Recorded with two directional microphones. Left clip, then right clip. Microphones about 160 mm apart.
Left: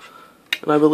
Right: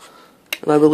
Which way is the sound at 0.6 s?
20° right (ahead or behind).